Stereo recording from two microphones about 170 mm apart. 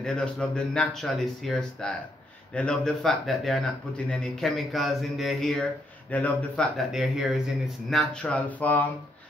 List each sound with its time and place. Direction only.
0.0 s speech: 5° left (ahead or behind)